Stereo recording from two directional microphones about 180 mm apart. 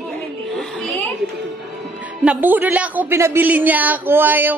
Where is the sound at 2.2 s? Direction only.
10° right (ahead or behind).